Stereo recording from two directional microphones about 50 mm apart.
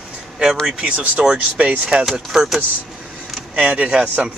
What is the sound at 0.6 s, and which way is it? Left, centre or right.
Speech, centre.